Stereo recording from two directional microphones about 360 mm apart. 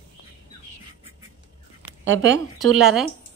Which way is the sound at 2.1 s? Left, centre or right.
Right.